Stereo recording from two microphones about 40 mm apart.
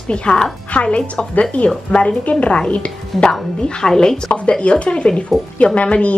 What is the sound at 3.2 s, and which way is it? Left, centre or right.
A woman's voice, centre.